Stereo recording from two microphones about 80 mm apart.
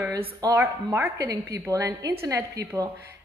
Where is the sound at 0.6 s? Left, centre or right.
Right.